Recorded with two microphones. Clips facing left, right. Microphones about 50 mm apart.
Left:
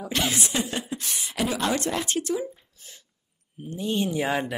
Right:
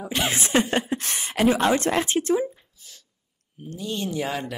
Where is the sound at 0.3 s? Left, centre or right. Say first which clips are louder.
Right 6 dB; right.